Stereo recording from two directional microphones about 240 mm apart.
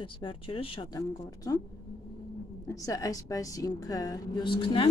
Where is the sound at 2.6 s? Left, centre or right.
Centre.